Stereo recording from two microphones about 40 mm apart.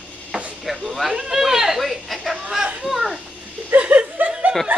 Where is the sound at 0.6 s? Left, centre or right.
Centre.